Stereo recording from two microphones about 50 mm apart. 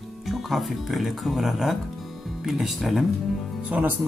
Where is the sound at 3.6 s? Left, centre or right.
Right.